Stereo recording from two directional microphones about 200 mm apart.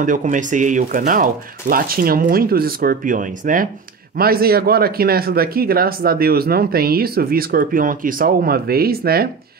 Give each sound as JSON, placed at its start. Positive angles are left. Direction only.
{"t": 0.0, "sound": "speech", "side_deg": -40}